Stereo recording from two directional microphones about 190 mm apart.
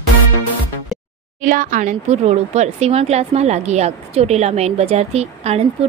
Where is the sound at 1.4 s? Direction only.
45° right (ahead or behind).